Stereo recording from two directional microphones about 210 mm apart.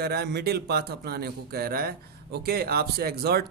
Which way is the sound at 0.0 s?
50° right (ahead or behind).